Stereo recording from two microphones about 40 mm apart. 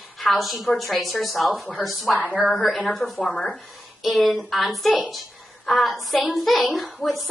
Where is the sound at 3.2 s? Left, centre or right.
Left.